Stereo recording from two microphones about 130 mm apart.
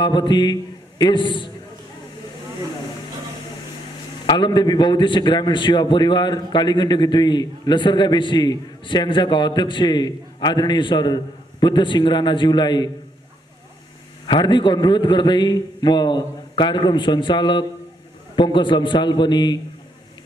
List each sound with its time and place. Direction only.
0.0 s a man's voice: 35° left (ahead or behind)
4.3 s a man's voice: 35° left (ahead or behind)
14.2 s a man's voice: 35° left (ahead or behind)